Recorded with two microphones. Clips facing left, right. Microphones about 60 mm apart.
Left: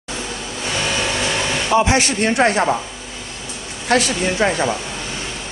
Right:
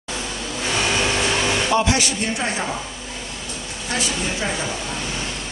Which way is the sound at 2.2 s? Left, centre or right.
Left.